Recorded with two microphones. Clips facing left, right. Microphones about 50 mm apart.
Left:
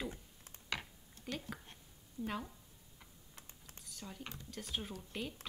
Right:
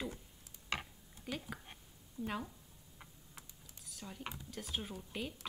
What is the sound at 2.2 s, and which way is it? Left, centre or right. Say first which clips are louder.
Speech: even; left.